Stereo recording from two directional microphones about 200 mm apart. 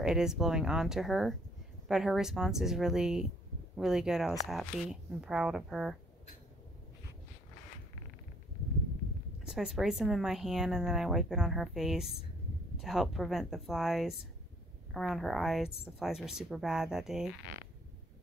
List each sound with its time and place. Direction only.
0.0 s speech: 5° right (ahead or behind)
9.4 s speech: 5° right (ahead or behind)